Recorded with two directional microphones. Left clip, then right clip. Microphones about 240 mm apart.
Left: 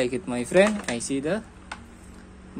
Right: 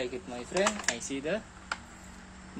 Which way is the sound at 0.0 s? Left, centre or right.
Left.